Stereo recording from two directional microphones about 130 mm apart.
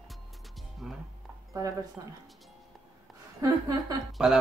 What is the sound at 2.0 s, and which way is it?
Speech, 30° right (ahead or behind).